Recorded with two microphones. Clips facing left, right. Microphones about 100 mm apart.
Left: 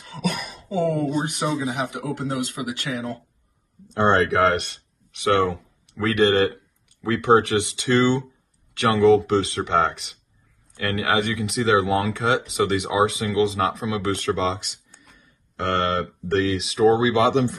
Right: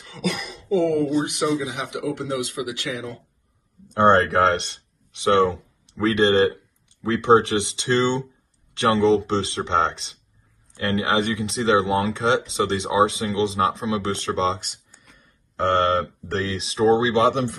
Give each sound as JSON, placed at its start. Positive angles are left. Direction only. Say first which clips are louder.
{"t": 0.0, "sound": "a sound", "louder": "even", "side_deg": 40}
{"t": 1.2, "sound": "speech", "louder": "right 2 dB", "side_deg": 40}
{"t": 3.9, "sound": "speech", "louder": "right 2 dB", "side_deg": -50}
{"t": 16.0, "sound": "speech", "louder": "left 3 dB", "side_deg": -35}
{"t": 17.3, "sound": "speech", "louder": "left 2 dB", "side_deg": -55}